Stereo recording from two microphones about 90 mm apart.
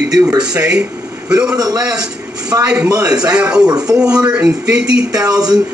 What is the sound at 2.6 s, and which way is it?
A man's voice, 10° right (ahead or behind).